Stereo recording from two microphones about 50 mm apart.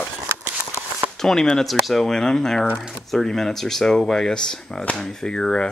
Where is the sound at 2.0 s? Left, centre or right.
Centre.